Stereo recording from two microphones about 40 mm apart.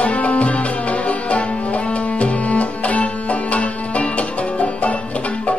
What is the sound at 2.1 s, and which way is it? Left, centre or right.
Music, left.